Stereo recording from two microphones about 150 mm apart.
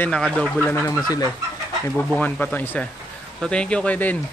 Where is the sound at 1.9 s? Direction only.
10° left (ahead or behind).